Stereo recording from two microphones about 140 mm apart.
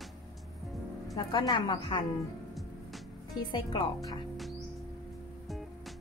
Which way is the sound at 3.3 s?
35° left (ahead or behind).